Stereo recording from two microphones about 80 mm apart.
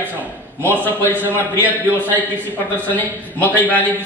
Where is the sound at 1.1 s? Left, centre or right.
Right.